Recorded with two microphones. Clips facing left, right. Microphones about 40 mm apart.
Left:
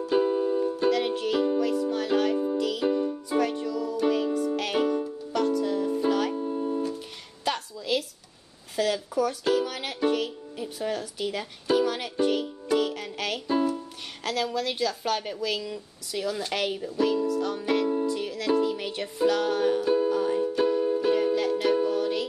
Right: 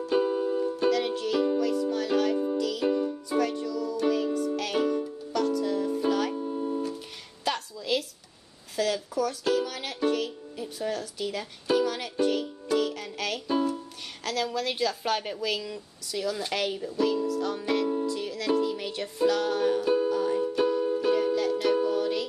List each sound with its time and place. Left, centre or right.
0.0 s music: centre
2.8 s music: centre
3.3 s music: left; by 6.3 s centre
6.3 s music: centre
7.4 s a sound: centre
8.7 s music: centre
14.2 s a woman's voice: centre
16.1 s speech: centre
16.5 s music: centre
20.1 s music: centre